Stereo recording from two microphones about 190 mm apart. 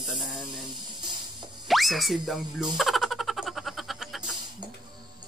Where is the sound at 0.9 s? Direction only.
25° right (ahead or behind).